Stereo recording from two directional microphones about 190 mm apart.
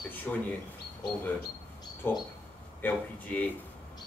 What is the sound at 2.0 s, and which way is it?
Speech, 10° left (ahead or behind).